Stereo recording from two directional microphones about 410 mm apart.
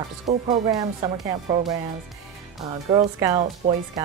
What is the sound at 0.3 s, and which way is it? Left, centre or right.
Speech, centre.